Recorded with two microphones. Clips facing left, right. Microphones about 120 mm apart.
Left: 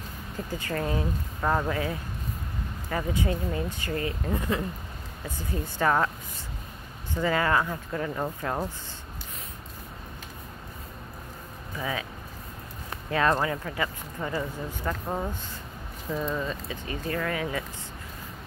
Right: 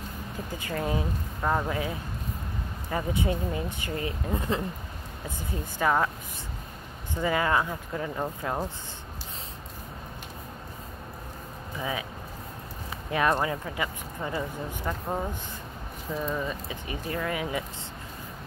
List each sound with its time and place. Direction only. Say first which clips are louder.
0.6 s speech: even; 15° right (ahead or behind)
1.4 s speech: left 1 dB; centre (ahead or behind)
1.7 s speech: left 1 dB; 15° right (ahead or behind)
5.4 s speech: left 1 dB; 10° right (ahead or behind)
7.2 s speech: left 1 dB; 15° right (ahead or behind)
11.8 s speech: even; 20° right (ahead or behind)
13.4 s speech: left 1 dB; 20° right (ahead or behind)